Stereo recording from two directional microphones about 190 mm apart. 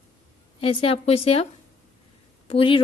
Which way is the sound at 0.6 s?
30° left (ahead or behind).